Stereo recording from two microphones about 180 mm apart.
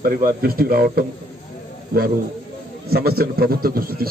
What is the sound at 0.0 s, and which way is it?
A man's voice, 50° right (ahead or behind).